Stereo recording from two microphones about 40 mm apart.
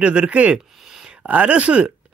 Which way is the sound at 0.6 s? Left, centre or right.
Centre.